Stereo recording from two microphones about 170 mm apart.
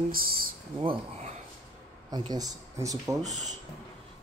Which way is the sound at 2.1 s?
20° right (ahead or behind).